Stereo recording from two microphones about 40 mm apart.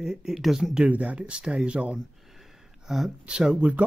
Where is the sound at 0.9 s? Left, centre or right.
Right.